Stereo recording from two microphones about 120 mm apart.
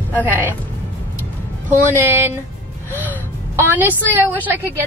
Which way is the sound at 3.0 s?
15° right (ahead or behind).